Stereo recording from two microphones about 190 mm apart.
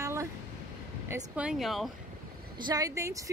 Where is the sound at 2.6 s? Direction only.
20° right (ahead or behind).